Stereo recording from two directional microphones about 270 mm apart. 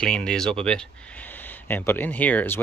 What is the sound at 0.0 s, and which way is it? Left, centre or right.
Speech, centre.